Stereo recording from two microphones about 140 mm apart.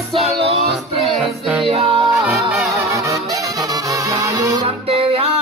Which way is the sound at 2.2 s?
Centre (ahead or behind).